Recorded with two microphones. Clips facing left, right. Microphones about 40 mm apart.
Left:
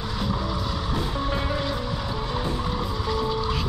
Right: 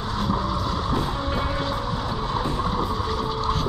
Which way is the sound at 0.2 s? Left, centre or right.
Right.